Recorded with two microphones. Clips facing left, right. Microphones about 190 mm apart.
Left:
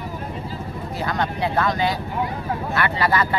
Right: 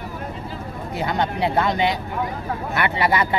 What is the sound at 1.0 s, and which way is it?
Speech, 25° right (ahead or behind).